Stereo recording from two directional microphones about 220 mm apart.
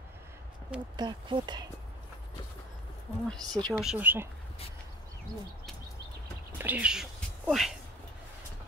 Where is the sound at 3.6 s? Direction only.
Centre (ahead or behind).